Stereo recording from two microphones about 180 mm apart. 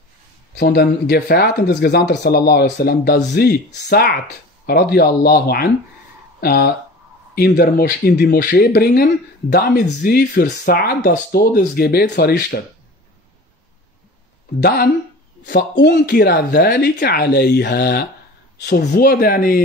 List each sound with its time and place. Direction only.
0.6 s speech: 60° left (ahead or behind)
14.6 s speech: 60° left (ahead or behind)
15.4 s speech: 75° left (ahead or behind); by 19.6 s 55° left (ahead or behind)